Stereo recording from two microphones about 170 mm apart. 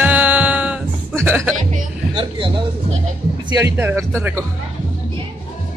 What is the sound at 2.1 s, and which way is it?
Speech, 30° right (ahead or behind).